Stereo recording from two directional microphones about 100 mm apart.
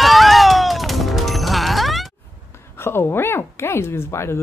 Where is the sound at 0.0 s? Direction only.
Centre (ahead or behind).